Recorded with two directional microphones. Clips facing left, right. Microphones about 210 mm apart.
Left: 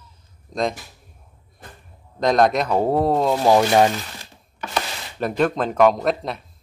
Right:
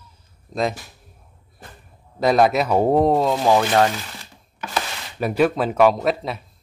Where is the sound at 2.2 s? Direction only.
5° right (ahead or behind).